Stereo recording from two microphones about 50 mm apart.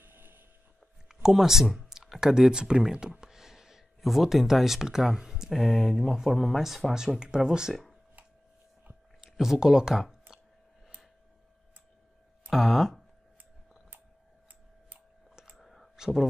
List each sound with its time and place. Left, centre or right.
0.0 s a sound: right
1.0 s speech: centre
1.8 s a sound: centre
4.8 s speech: centre
9.2 s speech: centre
12.4 s speech: centre
15.5 s clicking: centre
16.0 s speech: centre